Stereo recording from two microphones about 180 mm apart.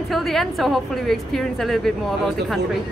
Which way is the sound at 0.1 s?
Centre (ahead or behind).